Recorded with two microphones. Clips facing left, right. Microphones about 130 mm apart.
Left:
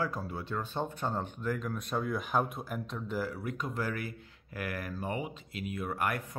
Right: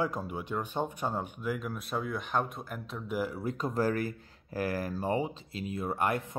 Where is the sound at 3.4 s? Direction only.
35° right (ahead or behind).